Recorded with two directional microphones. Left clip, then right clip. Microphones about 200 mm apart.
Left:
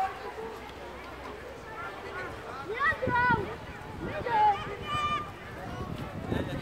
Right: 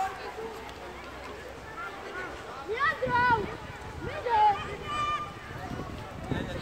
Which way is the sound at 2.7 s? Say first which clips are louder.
Right 1 dB; 45° right (ahead or behind).